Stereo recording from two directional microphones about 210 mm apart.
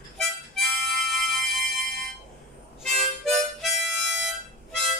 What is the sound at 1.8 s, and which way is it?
Music, centre (ahead or behind).